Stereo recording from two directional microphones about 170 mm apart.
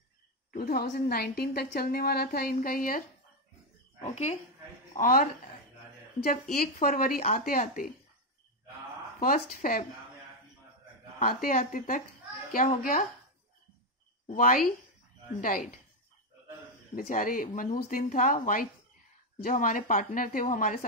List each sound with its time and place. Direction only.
0.5 s a woman's voice: 60° left (ahead or behind)
4.0 s speech: 40° left (ahead or behind)
4.9 s speech: 55° left (ahead or behind)
6.8 s a woman's voice: 55° left (ahead or behind)
9.2 s speech: 55° left (ahead or behind)
11.1 s speech: 55° left (ahead or behind)
14.3 s speech: 55° left (ahead or behind)
16.9 s speech: 55° left (ahead or behind)